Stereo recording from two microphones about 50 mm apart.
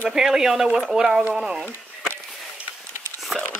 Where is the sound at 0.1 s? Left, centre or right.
Centre.